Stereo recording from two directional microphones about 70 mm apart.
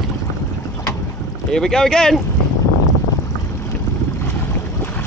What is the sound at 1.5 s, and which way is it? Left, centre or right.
Speech, centre.